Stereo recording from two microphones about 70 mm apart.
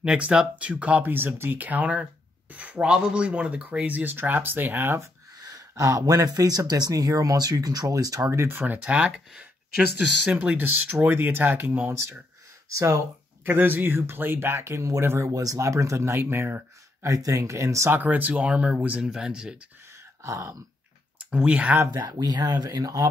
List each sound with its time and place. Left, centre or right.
0.0 s speech: centre
1.1 s speech: right
5.4 s speech: right
8.3 s speech: right
8.5 s speech: right
12.6 s speech: right
13.5 s speech: right
17.0 s speech: right
17.9 s speech: right
21.3 s speech: centre
21.9 s speech: right